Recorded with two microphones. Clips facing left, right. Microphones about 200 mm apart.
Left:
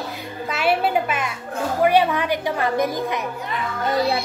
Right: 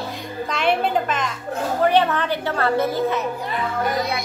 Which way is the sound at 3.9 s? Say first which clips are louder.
Left 3 dB; 30° left (ahead or behind).